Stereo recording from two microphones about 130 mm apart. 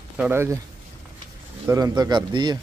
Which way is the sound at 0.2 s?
20° right (ahead or behind).